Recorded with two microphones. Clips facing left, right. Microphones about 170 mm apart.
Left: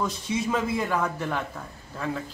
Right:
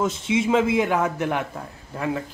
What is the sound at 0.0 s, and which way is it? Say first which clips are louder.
Speech: right 5 dB; 20° right (ahead or behind).